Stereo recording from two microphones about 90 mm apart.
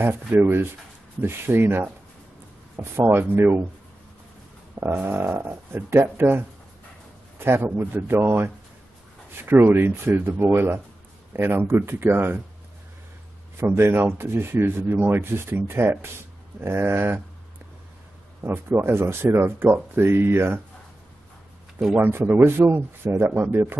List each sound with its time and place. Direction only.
0.3 s speech: 25° right (ahead or behind)
4.7 s speech: 25° right (ahead or behind)
13.6 s speech: 25° right (ahead or behind)
18.4 s speech: 25° right (ahead or behind)
21.7 s speech: 10° right (ahead or behind)
22.0 s speech: 25° right (ahead or behind)